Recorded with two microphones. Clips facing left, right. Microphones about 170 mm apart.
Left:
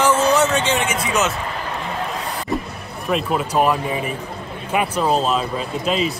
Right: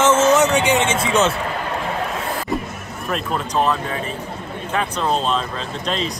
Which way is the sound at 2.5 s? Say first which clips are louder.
Left 1 dB; centre (ahead or behind).